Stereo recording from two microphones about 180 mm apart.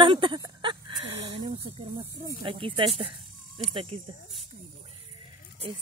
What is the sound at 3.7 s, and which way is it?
Speech, 30° right (ahead or behind).